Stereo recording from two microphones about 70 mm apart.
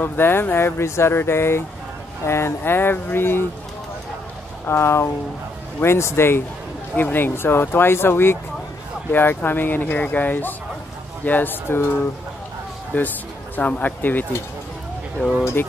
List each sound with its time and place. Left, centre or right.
0.0 s speech: left
4.6 s speech: left